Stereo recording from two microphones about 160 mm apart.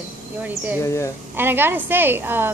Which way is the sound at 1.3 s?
15° right (ahead or behind).